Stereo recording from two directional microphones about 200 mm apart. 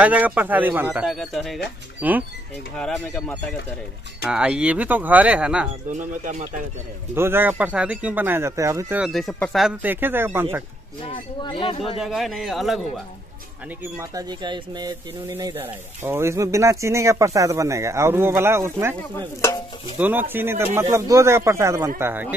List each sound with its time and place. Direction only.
0.0 s speech: 5° right (ahead or behind)
2.8 s speech: 5° left (ahead or behind)
4.3 s speech: 5° right (ahead or behind)
5.9 s speech: 40° right (ahead or behind)
7.2 s speech: 10° right (ahead or behind)
11.1 s speech: 25° left (ahead or behind)
12.0 s speech: centre (ahead or behind)
13.9 s speech: 20° right (ahead or behind)
19.1 s speech: 15° left (ahead or behind)
20.0 s speech: 10° right (ahead or behind)